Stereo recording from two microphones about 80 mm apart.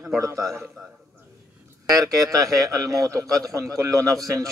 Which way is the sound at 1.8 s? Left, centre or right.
Right.